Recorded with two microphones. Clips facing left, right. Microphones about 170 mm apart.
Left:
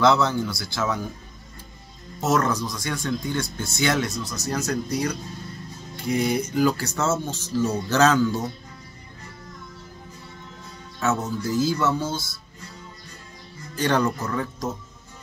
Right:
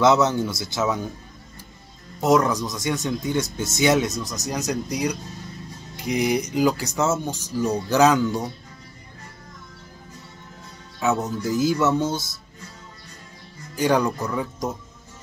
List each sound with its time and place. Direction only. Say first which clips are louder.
0.0 s speech: right 2 dB; 20° right (ahead or behind)
2.1 s speech: right 3 dB; 15° right (ahead or behind)
11.0 s speech: right 2 dB; 15° right (ahead or behind)
13.7 s speech: right 2 dB; 10° right (ahead or behind)